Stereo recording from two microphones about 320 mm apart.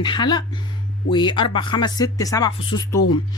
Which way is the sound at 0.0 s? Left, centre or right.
Centre.